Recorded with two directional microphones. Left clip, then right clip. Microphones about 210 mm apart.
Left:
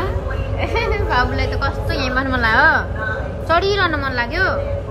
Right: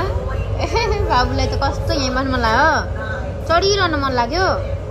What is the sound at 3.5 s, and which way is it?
A woman's voice, 5° right (ahead or behind).